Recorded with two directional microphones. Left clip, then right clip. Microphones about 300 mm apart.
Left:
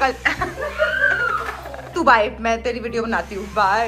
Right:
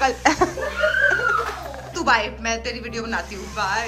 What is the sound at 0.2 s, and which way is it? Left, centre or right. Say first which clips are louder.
Speech: right 3 dB; centre.